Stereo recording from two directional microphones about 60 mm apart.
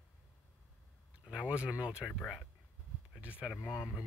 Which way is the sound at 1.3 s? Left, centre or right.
Centre.